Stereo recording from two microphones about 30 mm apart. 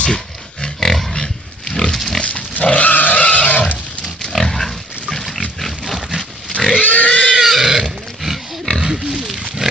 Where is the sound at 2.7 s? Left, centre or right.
Left.